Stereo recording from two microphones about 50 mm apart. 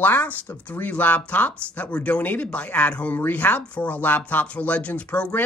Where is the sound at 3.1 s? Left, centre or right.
Left.